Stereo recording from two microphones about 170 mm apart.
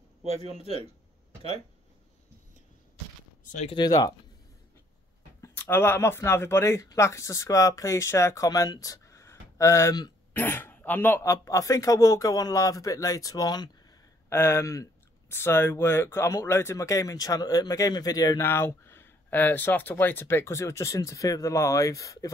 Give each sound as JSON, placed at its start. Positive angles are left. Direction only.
{"t": 0.2, "sound": "speech", "side_deg": -35}
{"t": 3.5, "sound": "a man's voice", "side_deg": 30}
{"t": 5.4, "sound": "a man's voice", "side_deg": 15}